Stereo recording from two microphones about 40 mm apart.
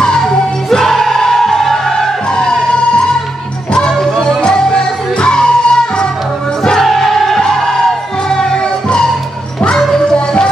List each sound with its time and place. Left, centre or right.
0.2 s music: centre
4.4 s music: centre
6.8 s music: centre